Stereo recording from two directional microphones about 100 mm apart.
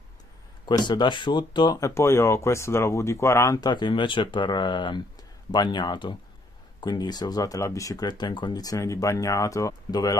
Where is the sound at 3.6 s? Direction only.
50° left (ahead or behind).